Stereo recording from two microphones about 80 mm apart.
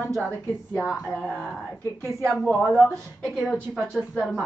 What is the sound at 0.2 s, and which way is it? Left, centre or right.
A woman's voice, centre.